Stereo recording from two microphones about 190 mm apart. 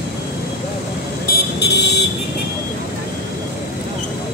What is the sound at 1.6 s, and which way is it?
Vehicle, 60° left (ahead or behind).